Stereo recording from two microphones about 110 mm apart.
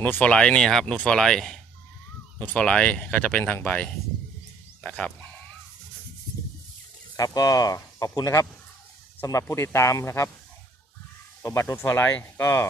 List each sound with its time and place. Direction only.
0.2 s speech: 10° left (ahead or behind)
7.2 s speech: 35° left (ahead or behind)
11.4 s speech: 25° left (ahead or behind)